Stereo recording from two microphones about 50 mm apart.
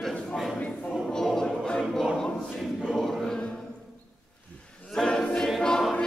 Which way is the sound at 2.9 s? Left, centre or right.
Centre.